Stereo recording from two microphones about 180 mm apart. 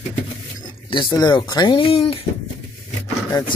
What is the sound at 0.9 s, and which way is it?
Speech, 25° left (ahead or behind).